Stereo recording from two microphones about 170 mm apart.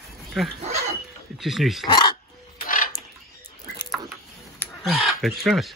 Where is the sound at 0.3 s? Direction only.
Centre (ahead or behind).